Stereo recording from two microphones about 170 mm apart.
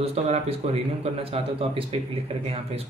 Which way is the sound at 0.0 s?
35° right (ahead or behind).